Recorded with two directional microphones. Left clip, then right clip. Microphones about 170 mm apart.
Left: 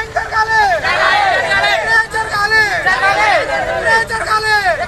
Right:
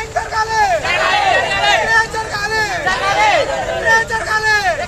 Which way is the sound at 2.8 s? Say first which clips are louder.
Left 2 dB; centre (ahead or behind).